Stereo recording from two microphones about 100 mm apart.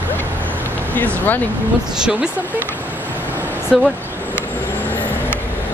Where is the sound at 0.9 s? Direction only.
15° left (ahead or behind).